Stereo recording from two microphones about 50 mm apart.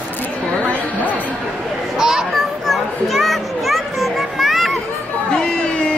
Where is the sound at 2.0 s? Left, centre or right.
Centre.